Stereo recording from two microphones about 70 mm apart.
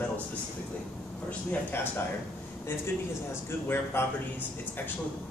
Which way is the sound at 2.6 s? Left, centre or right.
Left.